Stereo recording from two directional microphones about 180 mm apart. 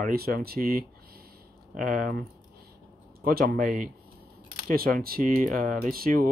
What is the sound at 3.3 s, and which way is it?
Speech, 55° right (ahead or behind).